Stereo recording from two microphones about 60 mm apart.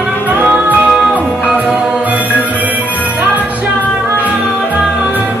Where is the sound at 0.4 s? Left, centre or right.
Right.